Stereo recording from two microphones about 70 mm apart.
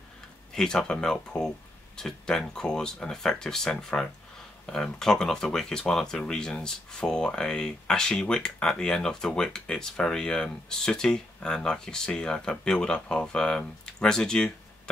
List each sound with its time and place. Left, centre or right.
0.5 s speech: centre